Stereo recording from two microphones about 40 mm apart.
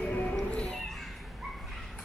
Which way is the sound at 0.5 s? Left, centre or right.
Left.